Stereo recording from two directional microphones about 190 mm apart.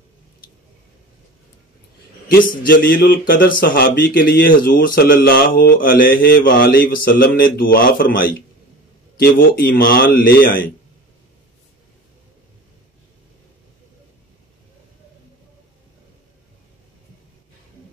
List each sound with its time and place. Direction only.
2.2 s speech: 50° left (ahead or behind)